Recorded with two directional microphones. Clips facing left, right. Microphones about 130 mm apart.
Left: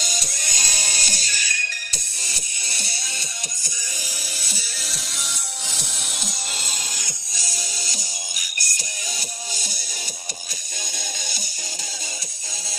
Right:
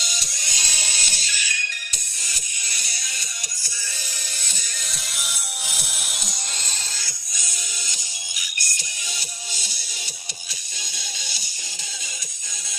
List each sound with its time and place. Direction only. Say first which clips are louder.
0.0 s music: left 4 dB; 45° left (ahead or behind)
2.2 s music: right 1 dB; 30° left (ahead or behind)
4.4 s music: left 3 dB; 10° left (ahead or behind)
5.2 s music: even; 5° right (ahead or behind)
7.3 s music: left 4 dB; 35° left (ahead or behind)